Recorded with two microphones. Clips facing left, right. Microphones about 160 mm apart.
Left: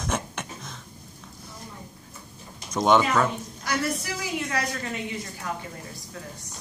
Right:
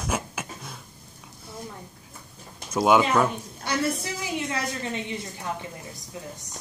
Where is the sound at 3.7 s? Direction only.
25° right (ahead or behind).